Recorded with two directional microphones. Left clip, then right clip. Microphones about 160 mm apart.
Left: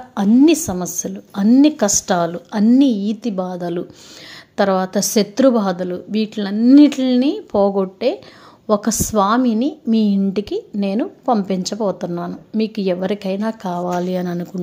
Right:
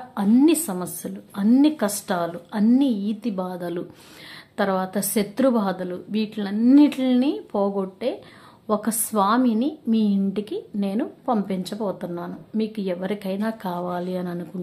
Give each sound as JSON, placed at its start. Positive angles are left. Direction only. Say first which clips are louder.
{"t": 0.3, "sound": "a woman's voice", "louder": "left 5 dB", "side_deg": 20}